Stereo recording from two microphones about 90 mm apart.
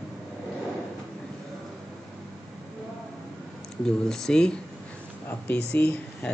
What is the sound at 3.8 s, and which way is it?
Speech, 5° left (ahead or behind).